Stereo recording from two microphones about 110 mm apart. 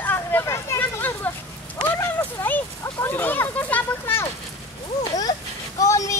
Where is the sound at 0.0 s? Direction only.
20° left (ahead or behind).